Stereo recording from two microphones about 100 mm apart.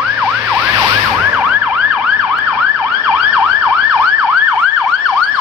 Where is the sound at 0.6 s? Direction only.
35° right (ahead or behind).